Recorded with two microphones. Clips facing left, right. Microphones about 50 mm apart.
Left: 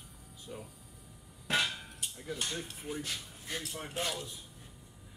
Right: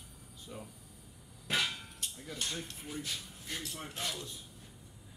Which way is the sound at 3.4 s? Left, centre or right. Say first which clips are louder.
Left 4 dB; centre.